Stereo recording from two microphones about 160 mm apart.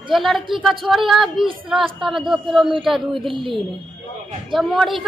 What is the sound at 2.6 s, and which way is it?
Speech, 30° right (ahead or behind).